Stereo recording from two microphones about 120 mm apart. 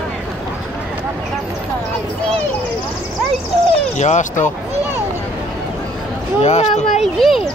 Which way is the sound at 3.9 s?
80° left.